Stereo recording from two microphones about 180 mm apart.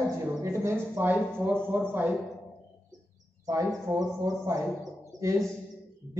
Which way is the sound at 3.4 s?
20° right (ahead or behind).